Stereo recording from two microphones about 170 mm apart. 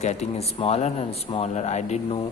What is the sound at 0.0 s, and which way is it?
A man's voice, 40° left (ahead or behind).